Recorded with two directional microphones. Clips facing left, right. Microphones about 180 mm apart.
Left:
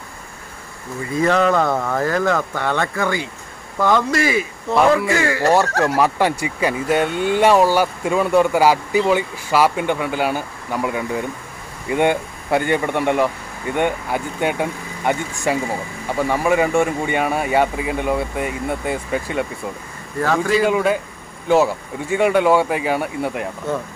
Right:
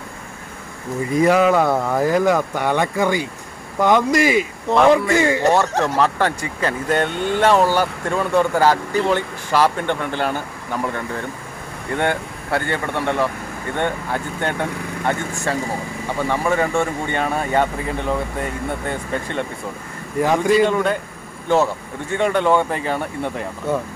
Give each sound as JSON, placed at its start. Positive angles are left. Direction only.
{"t": 1.1, "sound": "speech", "side_deg": -10}
{"t": 5.9, "sound": "speech", "side_deg": 10}
{"t": 20.2, "sound": "speech", "side_deg": -15}
{"t": 20.6, "sound": "speech", "side_deg": 5}
{"t": 22.1, "sound": "speech", "side_deg": 10}